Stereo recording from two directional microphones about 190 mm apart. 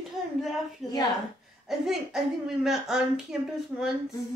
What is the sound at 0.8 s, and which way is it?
A woman's voice, centre (ahead or behind).